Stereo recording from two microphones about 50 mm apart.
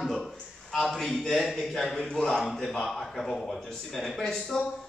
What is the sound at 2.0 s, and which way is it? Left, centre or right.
Speech, centre.